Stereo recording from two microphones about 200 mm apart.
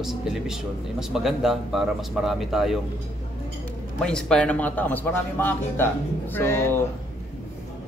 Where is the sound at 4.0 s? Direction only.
5° left (ahead or behind).